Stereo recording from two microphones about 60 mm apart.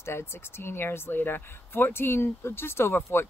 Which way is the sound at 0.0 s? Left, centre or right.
Left.